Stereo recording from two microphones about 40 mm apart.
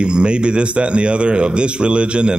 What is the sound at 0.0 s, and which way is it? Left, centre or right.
Speech, right.